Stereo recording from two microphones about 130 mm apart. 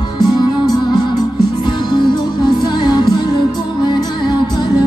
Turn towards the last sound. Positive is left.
turn(degrees=35)  # may be behind; listen again after turning